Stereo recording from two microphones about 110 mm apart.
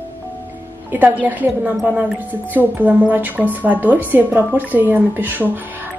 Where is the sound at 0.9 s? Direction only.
15° right (ahead or behind).